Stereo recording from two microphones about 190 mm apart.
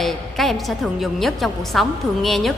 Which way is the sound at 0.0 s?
Centre (ahead or behind).